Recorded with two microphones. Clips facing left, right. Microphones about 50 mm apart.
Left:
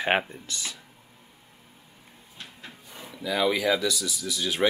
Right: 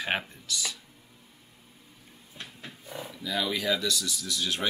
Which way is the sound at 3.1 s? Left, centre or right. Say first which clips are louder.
Left 6 dB; centre.